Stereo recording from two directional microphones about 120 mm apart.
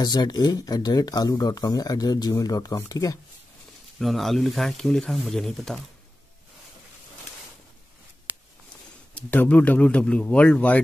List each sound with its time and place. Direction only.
0.0 s speech: 35° left (ahead or behind)
4.0 s speech: centre (ahead or behind)
9.3 s speech: 15° left (ahead or behind)